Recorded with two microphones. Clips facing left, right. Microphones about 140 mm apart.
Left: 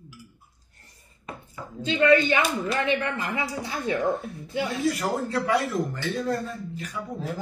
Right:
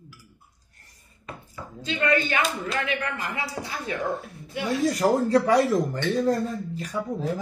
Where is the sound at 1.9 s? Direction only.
25° left (ahead or behind).